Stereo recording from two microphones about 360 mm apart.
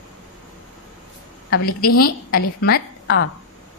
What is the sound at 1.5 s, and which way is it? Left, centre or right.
A woman's voice, left.